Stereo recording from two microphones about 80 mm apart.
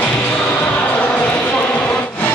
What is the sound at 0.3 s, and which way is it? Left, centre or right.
Basketball bounce, centre.